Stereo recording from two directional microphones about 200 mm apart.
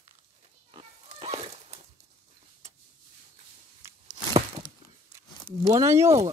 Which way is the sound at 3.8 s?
15° right (ahead or behind).